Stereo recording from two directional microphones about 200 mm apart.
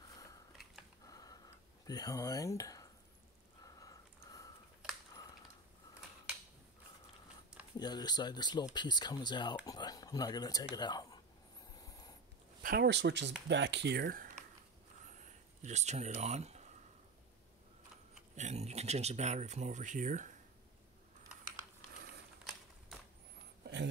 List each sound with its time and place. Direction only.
0.1 s biting: 20° left (ahead or behind)
1.0 s a sound: 20° left (ahead or behind)
7.7 s speech: 20° left (ahead or behind)
11.8 s snort: 20° left (ahead or behind)
12.6 s speech: 55° right (ahead or behind)
15.6 s speech: 35° right (ahead or behind)
18.3 s speech: 35° right (ahead or behind)
22.4 s a sound: centre (ahead or behind)
23.6 s a sound: 60° right (ahead or behind)